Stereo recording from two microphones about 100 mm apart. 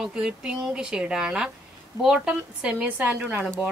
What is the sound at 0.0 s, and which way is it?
Speech, 5° right (ahead or behind).